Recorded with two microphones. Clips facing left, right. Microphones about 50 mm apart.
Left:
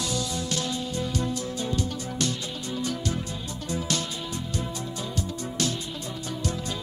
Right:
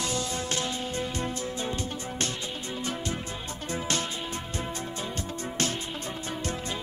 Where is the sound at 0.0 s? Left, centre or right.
Right.